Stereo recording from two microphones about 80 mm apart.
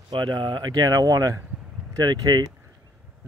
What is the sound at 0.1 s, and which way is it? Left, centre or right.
Speech, right.